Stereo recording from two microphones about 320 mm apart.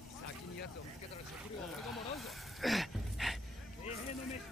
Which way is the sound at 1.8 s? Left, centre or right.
Centre.